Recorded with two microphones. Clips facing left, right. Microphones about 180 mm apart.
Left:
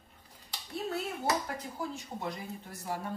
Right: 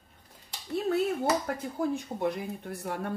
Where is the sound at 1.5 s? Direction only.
60° right (ahead or behind).